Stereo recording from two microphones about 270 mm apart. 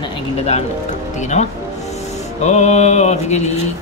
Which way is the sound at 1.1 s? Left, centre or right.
Left.